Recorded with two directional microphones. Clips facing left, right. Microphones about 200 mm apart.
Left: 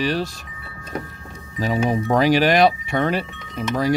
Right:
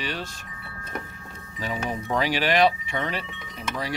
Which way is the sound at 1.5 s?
40° left (ahead or behind).